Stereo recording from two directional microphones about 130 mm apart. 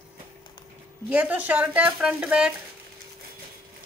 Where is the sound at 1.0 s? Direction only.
10° right (ahead or behind).